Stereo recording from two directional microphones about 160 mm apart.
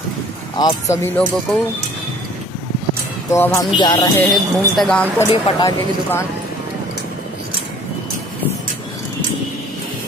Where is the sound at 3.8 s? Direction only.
25° left (ahead or behind).